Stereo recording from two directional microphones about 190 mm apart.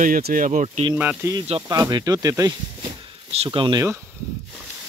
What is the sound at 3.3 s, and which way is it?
Speech, 30° right (ahead or behind).